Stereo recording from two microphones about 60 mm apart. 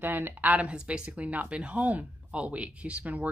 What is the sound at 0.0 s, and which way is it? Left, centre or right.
Speech, right.